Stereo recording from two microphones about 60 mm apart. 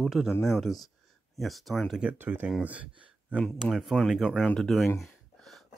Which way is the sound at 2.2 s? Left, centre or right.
Right.